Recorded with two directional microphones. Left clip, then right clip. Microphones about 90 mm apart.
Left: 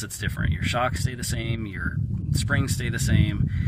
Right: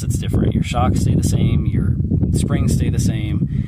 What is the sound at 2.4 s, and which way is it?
Speech, 35° right (ahead or behind).